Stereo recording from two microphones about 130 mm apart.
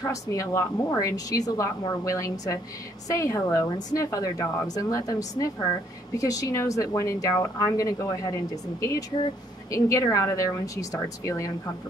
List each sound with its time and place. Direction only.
0.0 s speech: 25° left (ahead or behind)
6.1 s speech: 25° left (ahead or behind)
9.7 s speech: 25° left (ahead or behind)